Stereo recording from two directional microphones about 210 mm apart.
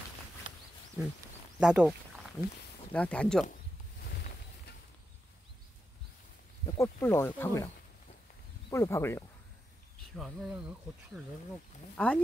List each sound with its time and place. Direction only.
1.0 s speech: 10° right (ahead or behind)
2.9 s speech: 5° left (ahead or behind)
6.8 s speech: 10° left (ahead or behind)
10.1 s speech: centre (ahead or behind)
12.0 s speech: 5° left (ahead or behind)